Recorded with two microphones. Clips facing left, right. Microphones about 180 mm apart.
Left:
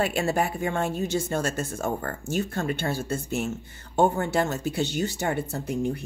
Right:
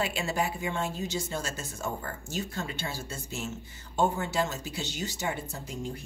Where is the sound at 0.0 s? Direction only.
55° left (ahead or behind).